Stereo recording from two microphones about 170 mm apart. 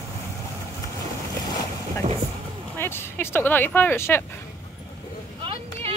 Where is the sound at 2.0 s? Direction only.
40° right (ahead or behind).